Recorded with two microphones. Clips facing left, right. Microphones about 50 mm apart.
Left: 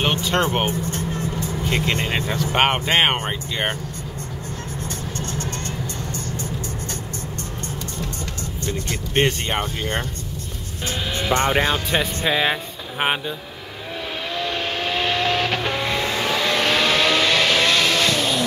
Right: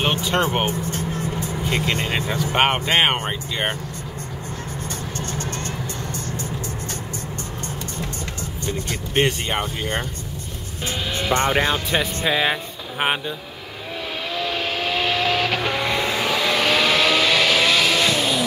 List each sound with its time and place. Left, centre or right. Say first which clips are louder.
0.0 s speech: even; centre
1.1 s vehicle: even; centre
1.7 s speech: even; centre
9.1 s speech: even; centre
11.1 s speech: even; centre
14.3 s vehicle: even; centre